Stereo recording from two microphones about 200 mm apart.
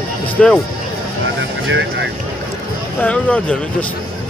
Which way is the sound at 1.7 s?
65° right (ahead or behind).